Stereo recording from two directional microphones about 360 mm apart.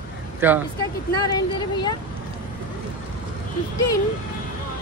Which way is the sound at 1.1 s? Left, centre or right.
Centre.